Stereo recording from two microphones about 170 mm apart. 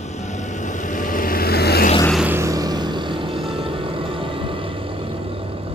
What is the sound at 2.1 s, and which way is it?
Vehicle, 5° right (ahead or behind).